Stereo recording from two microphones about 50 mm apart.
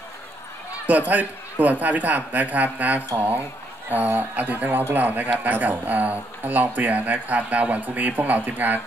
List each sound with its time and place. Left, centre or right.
0.8 s speech: right